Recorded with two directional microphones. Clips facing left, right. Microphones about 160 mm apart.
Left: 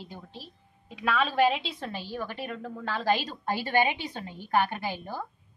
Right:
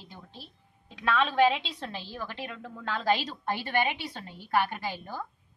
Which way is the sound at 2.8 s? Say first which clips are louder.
Right 1 dB; 10° left (ahead or behind).